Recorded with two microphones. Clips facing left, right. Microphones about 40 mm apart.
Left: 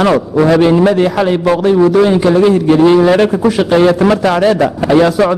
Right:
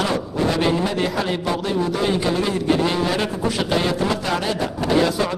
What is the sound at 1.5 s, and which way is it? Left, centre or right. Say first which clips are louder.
Speech: left 13 dB; left.